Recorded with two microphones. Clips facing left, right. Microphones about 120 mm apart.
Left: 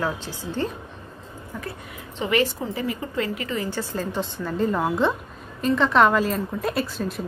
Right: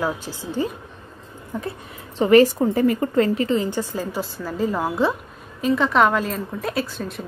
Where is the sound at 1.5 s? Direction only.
20° right (ahead or behind).